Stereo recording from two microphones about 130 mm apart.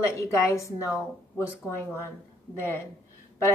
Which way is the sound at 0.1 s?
25° left (ahead or behind).